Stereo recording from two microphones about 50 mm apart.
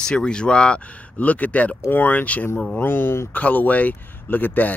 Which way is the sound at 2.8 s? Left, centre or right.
Left.